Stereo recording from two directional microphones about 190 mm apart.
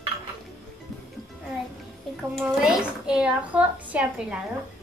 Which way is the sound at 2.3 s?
Centre (ahead or behind).